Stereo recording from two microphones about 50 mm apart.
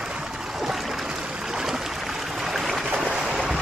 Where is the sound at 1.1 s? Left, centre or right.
Centre.